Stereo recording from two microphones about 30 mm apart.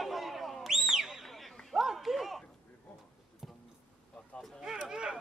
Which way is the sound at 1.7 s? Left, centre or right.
Centre.